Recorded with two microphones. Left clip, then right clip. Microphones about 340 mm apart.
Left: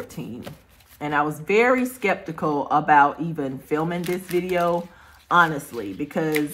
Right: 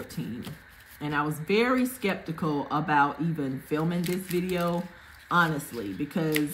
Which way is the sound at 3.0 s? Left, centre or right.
Left.